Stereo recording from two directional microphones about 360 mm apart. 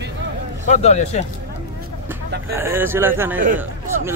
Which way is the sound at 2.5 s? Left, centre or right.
Centre.